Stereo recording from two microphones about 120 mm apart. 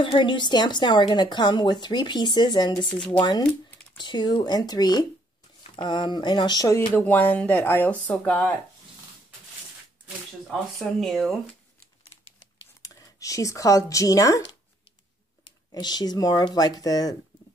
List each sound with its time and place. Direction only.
0.0 s a woman's voice: 45° left (ahead or behind)
6.9 s speech: 15° left (ahead or behind)
10.0 s speech: centre (ahead or behind)
12.8 s speech: 25° left (ahead or behind)
15.4 s a woman's voice: 35° left (ahead or behind)